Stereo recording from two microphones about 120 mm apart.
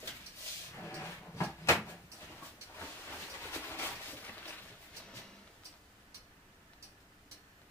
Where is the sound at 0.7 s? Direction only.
15° left (ahead or behind).